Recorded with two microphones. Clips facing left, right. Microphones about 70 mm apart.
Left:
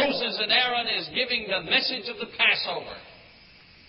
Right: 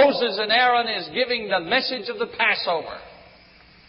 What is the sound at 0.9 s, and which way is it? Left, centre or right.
A man's voice, right.